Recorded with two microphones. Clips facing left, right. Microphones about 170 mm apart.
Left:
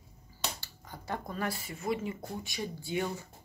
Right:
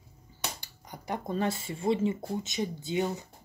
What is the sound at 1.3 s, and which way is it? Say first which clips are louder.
Speech: right 9 dB; 25° right (ahead or behind).